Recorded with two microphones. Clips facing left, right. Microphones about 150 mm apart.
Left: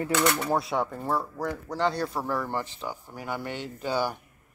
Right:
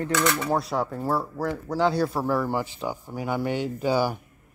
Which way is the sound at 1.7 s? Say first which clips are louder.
Right 5 dB; 5° right (ahead or behind).